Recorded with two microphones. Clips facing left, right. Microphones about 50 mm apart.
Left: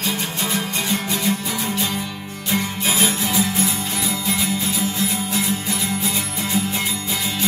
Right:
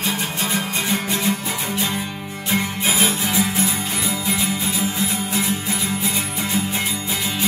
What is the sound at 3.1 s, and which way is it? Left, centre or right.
Music, centre.